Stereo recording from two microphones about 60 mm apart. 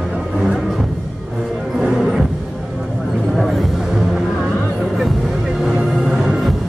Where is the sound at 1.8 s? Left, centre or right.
Centre.